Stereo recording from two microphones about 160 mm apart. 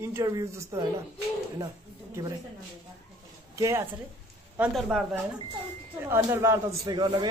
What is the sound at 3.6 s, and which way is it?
Speech, 20° right (ahead or behind).